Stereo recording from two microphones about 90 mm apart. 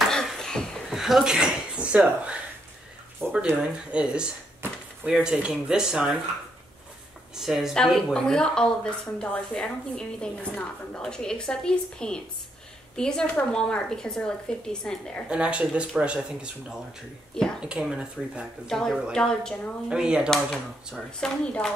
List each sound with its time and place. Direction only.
0.1 s a sound: 5° left (ahead or behind)
0.9 s speech: 5° right (ahead or behind)
3.2 s speech: 25° right (ahead or behind)
3.9 s speech: 10° right (ahead or behind)
7.3 s speech: 5° right (ahead or behind)
7.7 s speech: 5° left (ahead or behind)
15.2 s speech: 10° right (ahead or behind)
17.6 s speech: 10° right (ahead or behind)
18.7 s speech: 5° left (ahead or behind)
19.9 s speech: 10° right (ahead or behind)
20.2 s speech: 5° left (ahead or behind)